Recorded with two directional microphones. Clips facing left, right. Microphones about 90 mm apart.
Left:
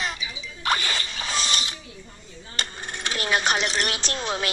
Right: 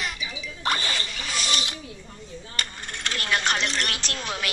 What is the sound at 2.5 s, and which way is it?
Coin, 20° left (ahead or behind).